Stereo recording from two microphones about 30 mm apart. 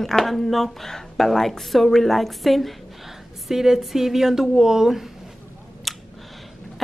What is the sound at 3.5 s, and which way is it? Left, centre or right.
Speech, centre.